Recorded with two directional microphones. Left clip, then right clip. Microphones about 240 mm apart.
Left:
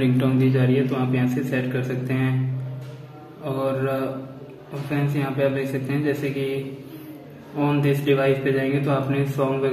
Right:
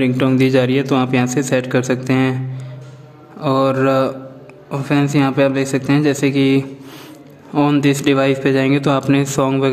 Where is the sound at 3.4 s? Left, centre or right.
Right.